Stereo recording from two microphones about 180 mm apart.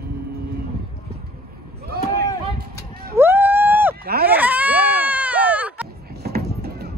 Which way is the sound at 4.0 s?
60° right (ahead or behind).